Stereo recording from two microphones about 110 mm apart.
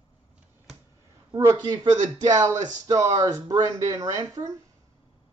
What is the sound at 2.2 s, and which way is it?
Speech, 35° right (ahead or behind).